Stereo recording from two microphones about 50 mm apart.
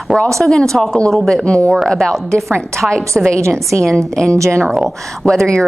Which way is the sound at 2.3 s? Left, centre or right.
Right.